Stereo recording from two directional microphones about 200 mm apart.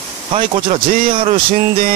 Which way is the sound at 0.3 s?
30° right (ahead or behind).